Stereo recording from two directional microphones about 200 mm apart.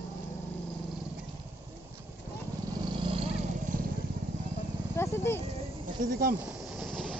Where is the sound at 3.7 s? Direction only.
40° right (ahead or behind).